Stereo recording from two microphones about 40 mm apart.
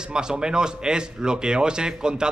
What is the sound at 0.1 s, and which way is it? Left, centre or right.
Speech, right.